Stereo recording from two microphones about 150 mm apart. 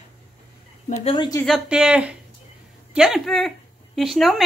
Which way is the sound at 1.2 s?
25° left (ahead or behind).